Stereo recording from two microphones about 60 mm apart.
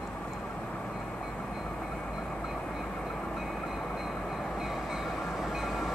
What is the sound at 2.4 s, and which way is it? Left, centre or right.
Train, centre.